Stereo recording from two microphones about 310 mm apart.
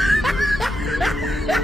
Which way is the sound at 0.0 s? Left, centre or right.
Centre.